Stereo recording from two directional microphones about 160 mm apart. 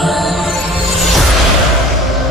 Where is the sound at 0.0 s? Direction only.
Centre (ahead or behind).